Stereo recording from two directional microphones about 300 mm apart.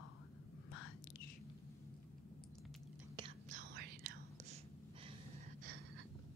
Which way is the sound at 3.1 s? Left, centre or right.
Right.